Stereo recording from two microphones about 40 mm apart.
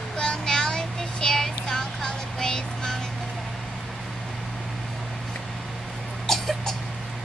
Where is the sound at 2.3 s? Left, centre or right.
Centre.